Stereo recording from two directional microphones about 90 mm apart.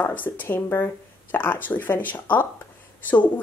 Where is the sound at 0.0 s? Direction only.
20° left (ahead or behind).